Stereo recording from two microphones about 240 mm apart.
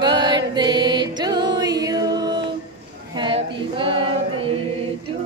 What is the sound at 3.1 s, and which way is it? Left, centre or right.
Female singing, right.